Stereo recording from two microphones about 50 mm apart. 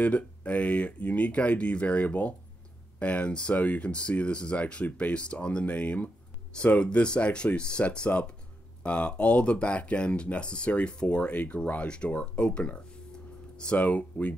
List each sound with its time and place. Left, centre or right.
0.0 s speech: left
13.7 s speech: left